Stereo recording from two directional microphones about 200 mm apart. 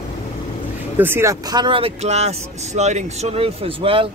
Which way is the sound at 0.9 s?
10° right (ahead or behind).